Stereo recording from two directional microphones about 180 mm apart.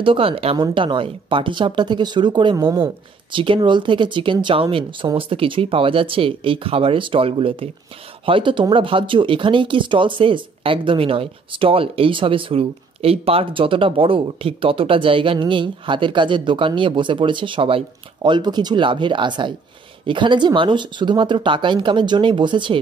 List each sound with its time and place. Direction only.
0.0 s speech: 30° right (ahead or behind)
2.6 s a woman's voice: 15° right (ahead or behind)
3.3 s speech: 30° right (ahead or behind)